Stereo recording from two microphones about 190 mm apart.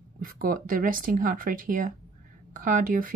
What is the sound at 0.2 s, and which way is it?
A woman's voice, 50° right (ahead or behind).